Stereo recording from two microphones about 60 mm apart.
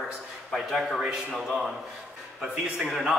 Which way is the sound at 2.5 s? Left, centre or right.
Centre.